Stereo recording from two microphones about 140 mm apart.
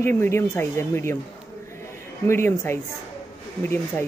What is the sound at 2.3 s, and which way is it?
A woman's voice, 15° left (ahead or behind).